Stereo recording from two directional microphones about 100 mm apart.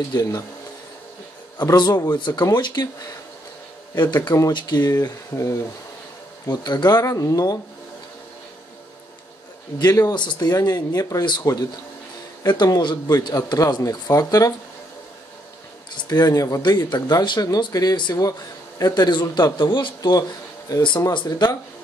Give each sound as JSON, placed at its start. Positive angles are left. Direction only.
{"t": 0.1, "sound": "speech", "side_deg": 40}
{"t": 1.7, "sound": "speech", "side_deg": 45}
{"t": 6.5, "sound": "speech", "side_deg": 45}
{"t": 9.8, "sound": "speech", "side_deg": 35}
{"t": 10.1, "sound": "speech", "side_deg": 50}
{"t": 16.0, "sound": "speech", "side_deg": 40}